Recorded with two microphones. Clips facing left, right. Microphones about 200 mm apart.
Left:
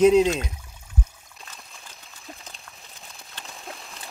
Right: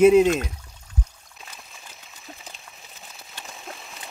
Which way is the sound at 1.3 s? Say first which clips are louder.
Right 1 dB; centre (ahead or behind).